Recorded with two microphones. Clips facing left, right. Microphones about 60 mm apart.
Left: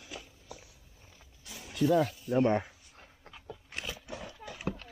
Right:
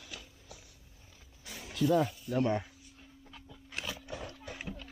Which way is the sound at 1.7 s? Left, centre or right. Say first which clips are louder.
Left 2 dB; centre.